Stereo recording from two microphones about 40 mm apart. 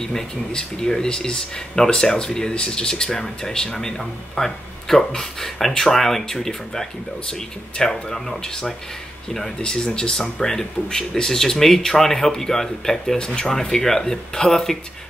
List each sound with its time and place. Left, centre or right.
0.0 s speech: centre